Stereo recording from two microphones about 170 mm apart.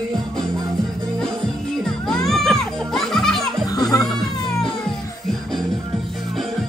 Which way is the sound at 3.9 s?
20° left (ahead or behind).